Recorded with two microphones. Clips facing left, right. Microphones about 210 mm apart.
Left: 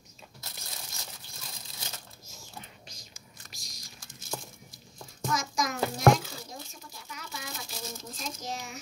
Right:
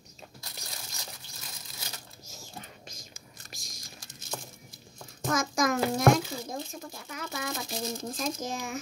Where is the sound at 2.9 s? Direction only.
45° right (ahead or behind).